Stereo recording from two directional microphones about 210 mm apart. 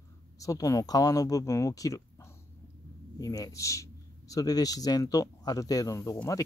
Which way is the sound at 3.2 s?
15° left (ahead or behind).